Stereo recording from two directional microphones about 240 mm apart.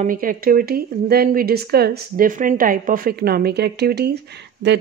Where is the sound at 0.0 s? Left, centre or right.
Right.